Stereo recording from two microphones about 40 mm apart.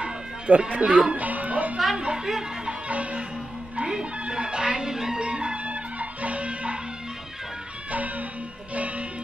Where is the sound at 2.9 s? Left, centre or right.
Right.